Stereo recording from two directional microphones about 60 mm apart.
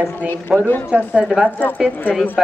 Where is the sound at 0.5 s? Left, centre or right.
Centre.